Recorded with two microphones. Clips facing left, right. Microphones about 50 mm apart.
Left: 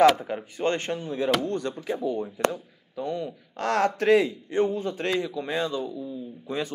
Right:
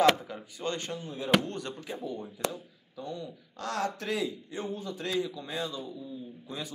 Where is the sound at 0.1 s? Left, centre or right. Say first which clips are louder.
Left 5 dB; left.